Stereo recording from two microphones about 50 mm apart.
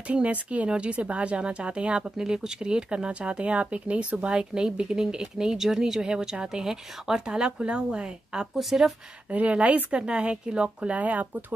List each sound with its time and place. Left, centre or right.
0.1 s speech: right
8.5 s speech: centre
9.3 s speech: right